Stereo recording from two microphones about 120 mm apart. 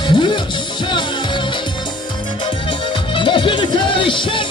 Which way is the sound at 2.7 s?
45° left (ahead or behind).